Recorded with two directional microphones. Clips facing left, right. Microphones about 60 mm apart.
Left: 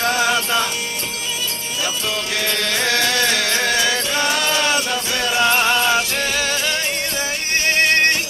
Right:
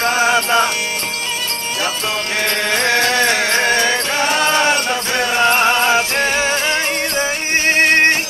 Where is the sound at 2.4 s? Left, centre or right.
Right.